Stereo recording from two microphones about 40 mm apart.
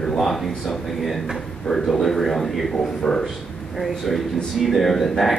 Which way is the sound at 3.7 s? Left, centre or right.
Centre.